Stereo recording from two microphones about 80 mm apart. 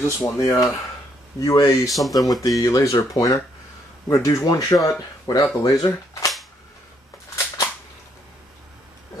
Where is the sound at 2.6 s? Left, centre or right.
Left.